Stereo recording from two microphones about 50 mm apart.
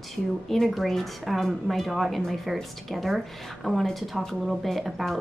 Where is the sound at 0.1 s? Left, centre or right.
Centre.